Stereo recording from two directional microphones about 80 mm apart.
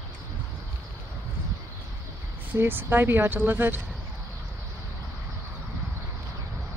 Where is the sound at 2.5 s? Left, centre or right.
Right.